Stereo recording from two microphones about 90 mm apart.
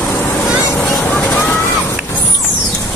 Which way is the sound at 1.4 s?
30° left (ahead or behind).